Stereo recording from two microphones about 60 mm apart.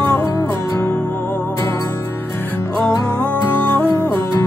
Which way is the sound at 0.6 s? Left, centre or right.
Left.